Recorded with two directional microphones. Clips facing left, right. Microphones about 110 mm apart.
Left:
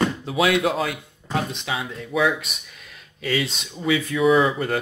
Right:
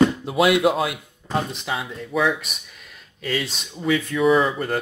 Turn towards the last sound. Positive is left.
turn(degrees=0)  # may be behind; listen again after turning